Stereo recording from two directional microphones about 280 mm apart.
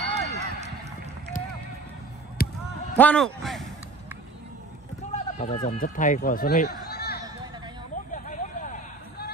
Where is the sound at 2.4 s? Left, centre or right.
Left.